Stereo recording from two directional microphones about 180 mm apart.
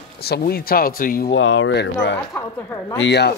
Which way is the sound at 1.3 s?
90° left.